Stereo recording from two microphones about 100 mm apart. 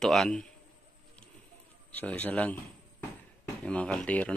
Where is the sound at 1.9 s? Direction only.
15° left (ahead or behind).